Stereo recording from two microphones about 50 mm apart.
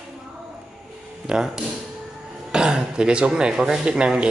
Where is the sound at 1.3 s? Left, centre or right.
Centre.